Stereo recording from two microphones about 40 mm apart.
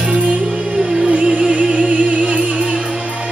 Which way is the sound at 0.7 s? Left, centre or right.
Centre.